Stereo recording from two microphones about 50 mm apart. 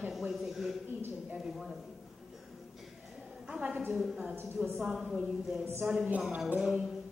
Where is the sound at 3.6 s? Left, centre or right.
Right.